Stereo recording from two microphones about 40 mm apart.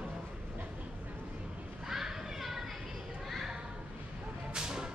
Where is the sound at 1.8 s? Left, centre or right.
Centre.